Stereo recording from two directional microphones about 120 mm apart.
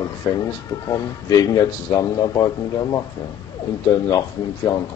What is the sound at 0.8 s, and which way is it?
Speech, 30° left (ahead or behind).